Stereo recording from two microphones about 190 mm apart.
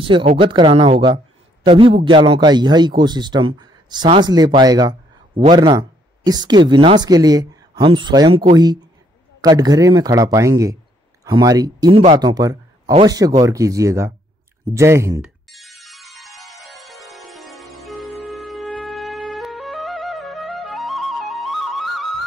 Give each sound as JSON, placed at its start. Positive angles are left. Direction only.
{"t": 0.3, "sound": "a man's voice", "side_deg": -25}
{"t": 9.4, "sound": "a man's voice", "side_deg": -20}
{"t": 15.2, "sound": "music", "side_deg": 0}